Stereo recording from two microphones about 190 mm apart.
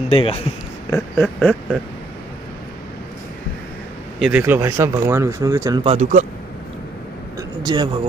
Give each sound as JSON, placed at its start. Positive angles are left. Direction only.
{"t": 0.1, "sound": "a man's voice", "side_deg": 30}
{"t": 0.8, "sound": "speech", "side_deg": 15}
{"t": 4.2, "sound": "speech", "side_deg": -10}
{"t": 5.9, "sound": "speech", "side_deg": -40}
{"t": 7.3, "sound": "a sound", "side_deg": -20}